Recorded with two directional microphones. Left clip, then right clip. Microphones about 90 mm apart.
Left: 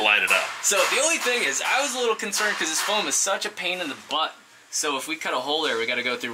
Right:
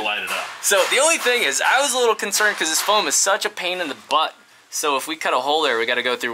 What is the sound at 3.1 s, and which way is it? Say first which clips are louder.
Speech: right 6 dB; 10° left (ahead or behind).